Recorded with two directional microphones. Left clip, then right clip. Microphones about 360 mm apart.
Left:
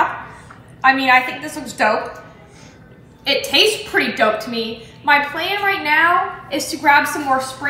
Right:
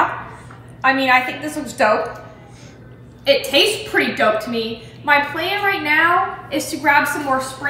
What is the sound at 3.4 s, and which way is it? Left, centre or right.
A woman's voice, centre.